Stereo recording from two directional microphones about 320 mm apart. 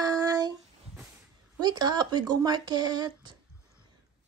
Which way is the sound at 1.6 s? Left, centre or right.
Centre.